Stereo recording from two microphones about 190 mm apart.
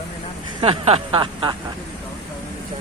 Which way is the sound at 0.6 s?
30° right (ahead or behind).